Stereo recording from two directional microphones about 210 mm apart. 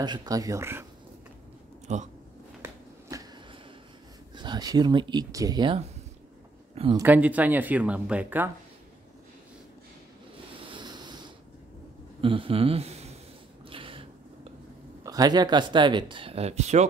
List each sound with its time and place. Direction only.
0.0 s speech: 20° right (ahead or behind)
1.9 s speech: 35° right (ahead or behind)
2.6 s finger snapping: 15° right (ahead or behind)
4.4 s speech: 20° right (ahead or behind)
6.7 s a sound: 25° right (ahead or behind)
7.0 s speech: 5° right (ahead or behind)
10.3 s a sound: 25° right (ahead or behind)
12.2 s speech: 25° right (ahead or behind)
13.7 s a sound: 25° right (ahead or behind)
15.0 s speech: 20° right (ahead or behind)